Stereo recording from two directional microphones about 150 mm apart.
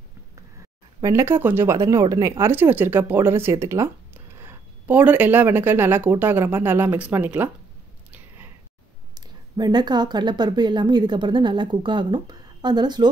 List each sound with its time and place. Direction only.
1.0 s speech: 15° right (ahead or behind)
9.1 s speech: 30° right (ahead or behind)